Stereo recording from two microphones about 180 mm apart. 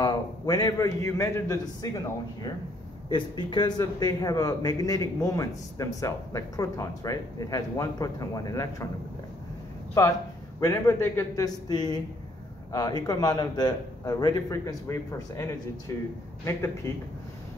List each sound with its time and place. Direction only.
0.0 s a man's voice: 20° left (ahead or behind)
10.6 s a man's voice: 15° left (ahead or behind)